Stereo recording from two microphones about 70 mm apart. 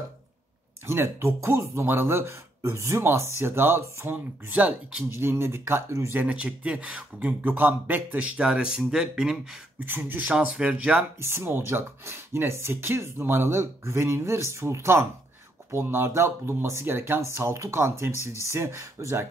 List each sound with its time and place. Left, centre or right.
0.8 s speech: right
1.9 s speech: right
6.1 s speech: centre
9.8 s speech: right
10.3 s speech: centre
11.1 s speech: right